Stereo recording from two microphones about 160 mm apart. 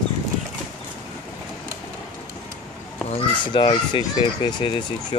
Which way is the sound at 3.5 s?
30° left (ahead or behind).